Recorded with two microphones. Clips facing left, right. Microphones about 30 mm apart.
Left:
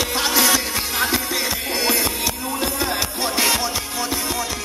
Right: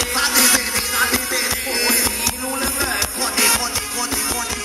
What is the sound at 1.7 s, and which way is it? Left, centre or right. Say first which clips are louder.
Music: right 1 dB; right.